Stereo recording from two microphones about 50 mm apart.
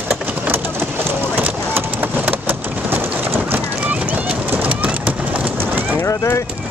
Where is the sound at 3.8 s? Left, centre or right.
Right.